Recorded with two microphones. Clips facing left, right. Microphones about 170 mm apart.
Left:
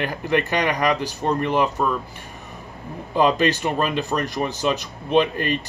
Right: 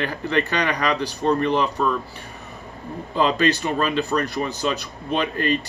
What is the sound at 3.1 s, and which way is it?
Speech, 15° left (ahead or behind).